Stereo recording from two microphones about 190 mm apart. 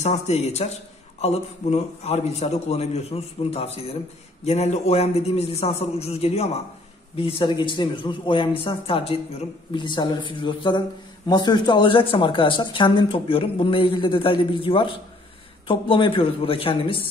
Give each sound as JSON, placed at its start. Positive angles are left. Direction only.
{"t": 0.0, "sound": "a man's voice", "side_deg": 35}